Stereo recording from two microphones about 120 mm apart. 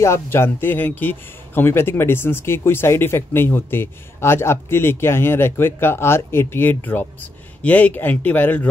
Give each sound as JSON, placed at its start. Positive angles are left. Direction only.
{"t": 0.0, "sound": "speech", "side_deg": 20}